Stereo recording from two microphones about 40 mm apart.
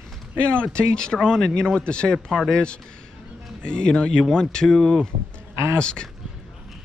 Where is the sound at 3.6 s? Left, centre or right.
Left.